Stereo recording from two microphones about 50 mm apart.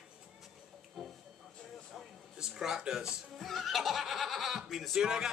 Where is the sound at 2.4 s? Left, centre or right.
Centre.